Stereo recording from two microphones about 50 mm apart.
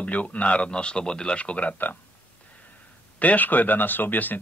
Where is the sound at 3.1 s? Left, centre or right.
Left.